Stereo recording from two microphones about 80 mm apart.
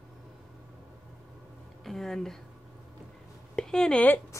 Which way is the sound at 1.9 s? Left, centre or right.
Centre.